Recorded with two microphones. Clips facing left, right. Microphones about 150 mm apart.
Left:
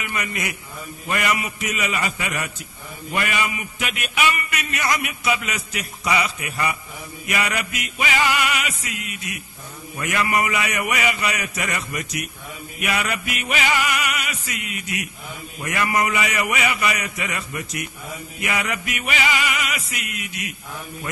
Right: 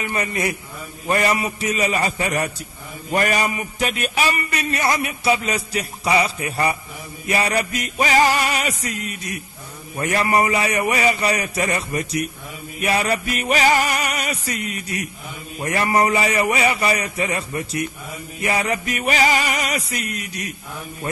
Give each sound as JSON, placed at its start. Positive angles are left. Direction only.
{"t": 0.1, "sound": "a man's voice", "side_deg": -35}